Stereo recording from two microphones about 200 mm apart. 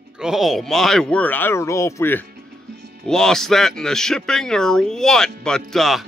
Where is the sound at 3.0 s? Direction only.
Centre (ahead or behind).